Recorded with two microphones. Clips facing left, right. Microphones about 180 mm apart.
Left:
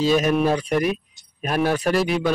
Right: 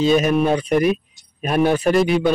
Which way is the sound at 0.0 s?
Centre (ahead or behind).